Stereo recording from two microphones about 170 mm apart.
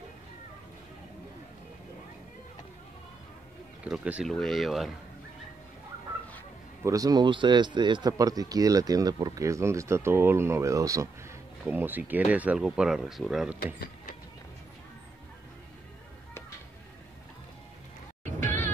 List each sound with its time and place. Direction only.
3.8 s speech: 5° right (ahead or behind)
6.8 s speech: 20° right (ahead or behind); by 13.6 s 5° right (ahead or behind)
18.2 s music: 45° right (ahead or behind)